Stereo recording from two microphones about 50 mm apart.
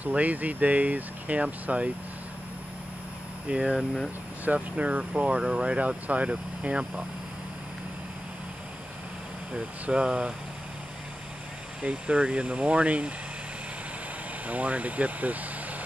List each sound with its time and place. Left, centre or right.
0.0 s speech: right
3.4 s speech: centre
9.8 s speech: centre
11.8 s speech: right
12.2 s speech: centre
14.4 s speech: right